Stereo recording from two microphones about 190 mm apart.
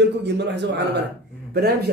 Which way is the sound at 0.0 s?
65° right (ahead or behind).